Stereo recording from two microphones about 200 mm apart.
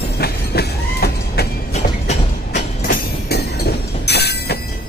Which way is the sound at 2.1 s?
35° left (ahead or behind).